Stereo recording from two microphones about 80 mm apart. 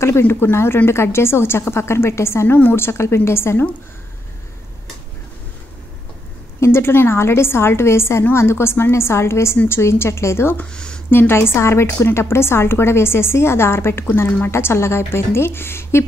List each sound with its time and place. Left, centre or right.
0.0 s a woman's voice: left
6.6 s a woman's voice: left
10.6 s speech: centre
11.1 s a woman's voice: left